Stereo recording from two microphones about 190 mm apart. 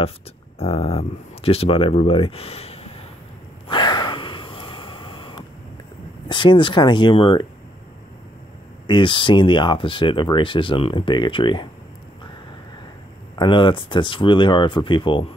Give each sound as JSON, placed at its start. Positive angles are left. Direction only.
{"t": 0.6, "sound": "speech", "side_deg": 30}
{"t": 3.6, "sound": "sniff", "side_deg": 25}
{"t": 6.2, "sound": "speech", "side_deg": 25}
{"t": 8.8, "sound": "speech", "side_deg": 25}
{"t": 13.4, "sound": "speech", "side_deg": 25}